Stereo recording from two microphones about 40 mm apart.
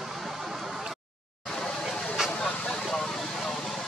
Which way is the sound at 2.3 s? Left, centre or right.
Left.